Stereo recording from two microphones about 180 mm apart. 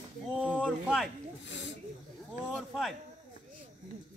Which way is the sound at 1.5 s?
90° left.